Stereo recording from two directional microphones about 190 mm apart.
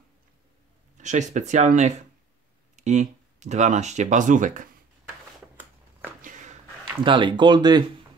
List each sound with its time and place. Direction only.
0.9 s speech: 40° right (ahead or behind)
6.2 s a sound: 40° right (ahead or behind)
7.0 s speech: 25° right (ahead or behind)